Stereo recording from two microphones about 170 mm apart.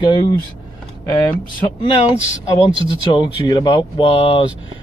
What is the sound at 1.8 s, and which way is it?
Speech, 35° left (ahead or behind).